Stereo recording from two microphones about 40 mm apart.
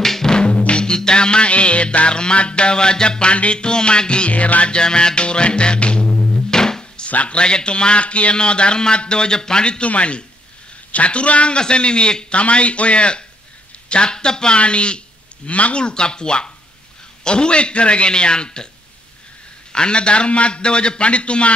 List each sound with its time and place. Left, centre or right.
0.0 s drum: centre
0.3 s music: left
7.1 s a man's voice: left
15.8 s speech: left
19.7 s speech: left